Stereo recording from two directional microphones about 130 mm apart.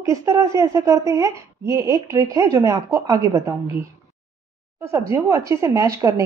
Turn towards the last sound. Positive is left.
turn(degrees=-25)  # may be behind; listen again after turning